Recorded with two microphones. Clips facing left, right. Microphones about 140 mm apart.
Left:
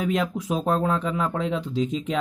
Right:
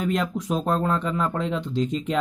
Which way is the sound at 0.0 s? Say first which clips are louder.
Even; centre (ahead or behind).